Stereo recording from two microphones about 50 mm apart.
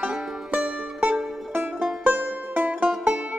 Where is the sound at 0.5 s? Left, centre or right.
Right.